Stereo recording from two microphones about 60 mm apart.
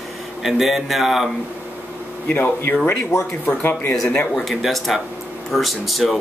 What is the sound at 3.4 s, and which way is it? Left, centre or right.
Speech, left.